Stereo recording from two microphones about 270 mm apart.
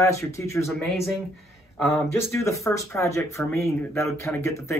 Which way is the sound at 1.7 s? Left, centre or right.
Centre.